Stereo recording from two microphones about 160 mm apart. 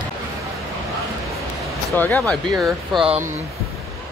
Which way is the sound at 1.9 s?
10° left (ahead or behind).